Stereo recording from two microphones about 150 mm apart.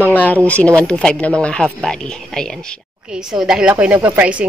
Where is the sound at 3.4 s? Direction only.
5° right (ahead or behind).